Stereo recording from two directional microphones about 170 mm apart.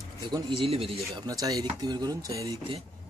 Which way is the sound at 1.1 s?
20° right (ahead or behind).